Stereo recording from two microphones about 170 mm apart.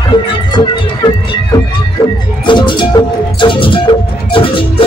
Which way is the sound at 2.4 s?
25° left (ahead or behind).